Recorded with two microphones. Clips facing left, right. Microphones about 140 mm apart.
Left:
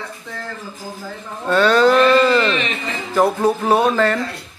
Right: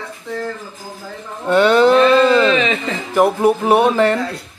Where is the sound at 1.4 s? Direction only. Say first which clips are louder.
Right 2 dB; 20° right (ahead or behind).